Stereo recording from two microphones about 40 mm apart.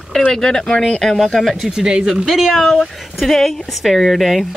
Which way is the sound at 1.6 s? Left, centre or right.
Centre.